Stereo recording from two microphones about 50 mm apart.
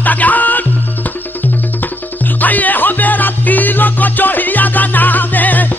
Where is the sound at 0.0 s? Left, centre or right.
Left.